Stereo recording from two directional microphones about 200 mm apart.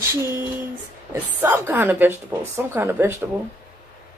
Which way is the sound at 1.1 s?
10° right (ahead or behind).